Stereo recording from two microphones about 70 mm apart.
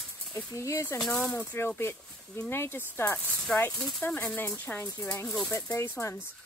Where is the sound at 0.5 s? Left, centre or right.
Left.